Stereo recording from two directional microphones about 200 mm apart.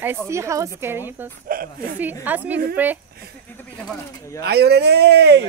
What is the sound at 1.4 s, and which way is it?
Speech, 45° right (ahead or behind).